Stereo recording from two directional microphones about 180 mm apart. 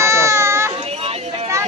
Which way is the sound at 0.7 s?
35° right (ahead or behind).